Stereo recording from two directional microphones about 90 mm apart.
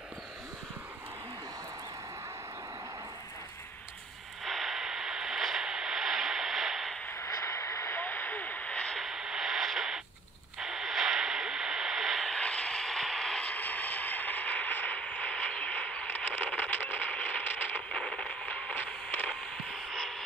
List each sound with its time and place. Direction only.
4.5 s radio: centre (ahead or behind)
7.1 s vehicle: 35° left (ahead or behind); by 9.0 s 10° left (ahead or behind)
9.0 s radio: 5° right (ahead or behind)